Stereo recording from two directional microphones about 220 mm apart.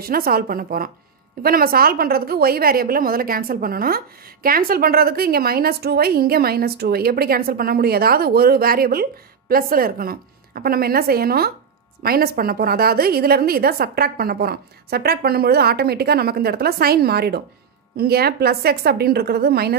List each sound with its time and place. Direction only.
0.0 s a woman's voice: 45° right (ahead or behind)